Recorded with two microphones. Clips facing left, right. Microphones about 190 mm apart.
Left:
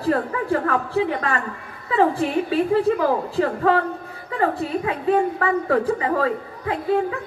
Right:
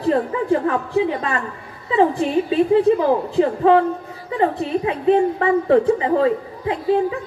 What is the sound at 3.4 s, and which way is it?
A woman's voice, 20° right (ahead or behind).